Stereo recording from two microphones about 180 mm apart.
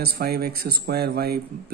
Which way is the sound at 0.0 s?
60° right (ahead or behind).